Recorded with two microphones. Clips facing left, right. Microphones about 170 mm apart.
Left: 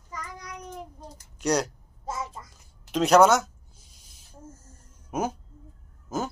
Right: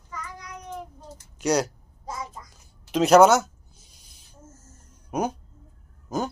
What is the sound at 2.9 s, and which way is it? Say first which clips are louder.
Speech: right 3 dB; centre (ahead or behind).